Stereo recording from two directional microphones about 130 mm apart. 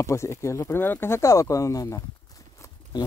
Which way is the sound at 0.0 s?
20° left (ahead or behind).